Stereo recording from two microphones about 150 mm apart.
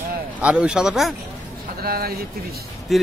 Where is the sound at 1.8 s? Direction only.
90° right.